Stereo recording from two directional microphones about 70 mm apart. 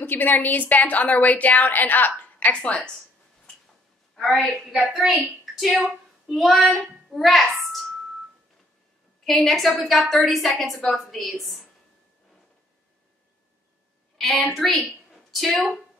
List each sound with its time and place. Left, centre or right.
0.0 s a woman's voice: left
2.6 s a woman's voice: centre
4.1 s a woman's voice: centre
5.4 s a sound: centre
5.9 s a woman's voice: centre
9.2 s a woman's voice: centre
14.1 s a sound: centre
14.4 s a woman's voice: centre